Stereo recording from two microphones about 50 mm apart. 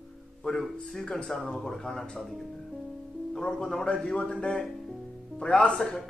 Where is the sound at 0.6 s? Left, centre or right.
Centre.